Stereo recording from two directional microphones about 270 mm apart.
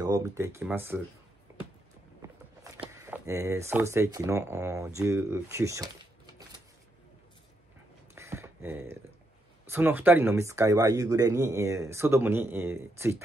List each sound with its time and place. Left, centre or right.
0.0 s speech: centre
2.6 s speech: centre
8.1 s a sound: centre
9.7 s speech: centre